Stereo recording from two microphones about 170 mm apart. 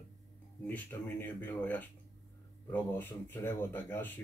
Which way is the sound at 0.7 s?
10° left (ahead or behind).